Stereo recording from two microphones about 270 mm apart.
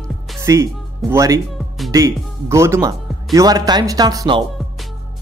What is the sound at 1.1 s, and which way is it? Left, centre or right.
Speech, centre.